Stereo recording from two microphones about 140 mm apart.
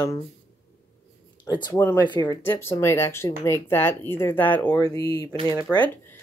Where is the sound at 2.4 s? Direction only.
15° left (ahead or behind).